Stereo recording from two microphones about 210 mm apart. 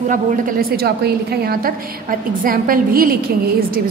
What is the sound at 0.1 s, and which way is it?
A woman's voice, 40° right (ahead or behind).